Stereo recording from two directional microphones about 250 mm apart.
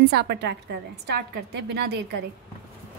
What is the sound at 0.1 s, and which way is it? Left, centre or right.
A woman's voice, right.